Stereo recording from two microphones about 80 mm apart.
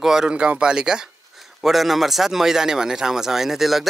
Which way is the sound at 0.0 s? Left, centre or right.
Centre.